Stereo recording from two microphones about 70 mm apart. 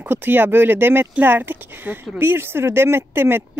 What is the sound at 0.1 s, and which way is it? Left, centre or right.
Speech, right.